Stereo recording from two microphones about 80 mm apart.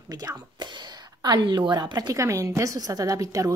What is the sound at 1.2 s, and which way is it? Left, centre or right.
A woman's voice, right.